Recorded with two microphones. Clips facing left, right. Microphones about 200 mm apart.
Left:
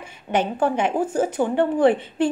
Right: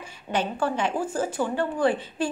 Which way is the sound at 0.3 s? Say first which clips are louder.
Left 5 dB; 20° left (ahead or behind).